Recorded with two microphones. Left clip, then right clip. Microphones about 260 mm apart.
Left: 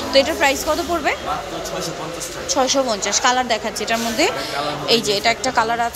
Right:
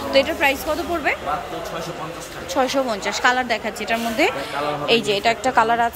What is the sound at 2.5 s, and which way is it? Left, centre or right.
A woman's voice, centre.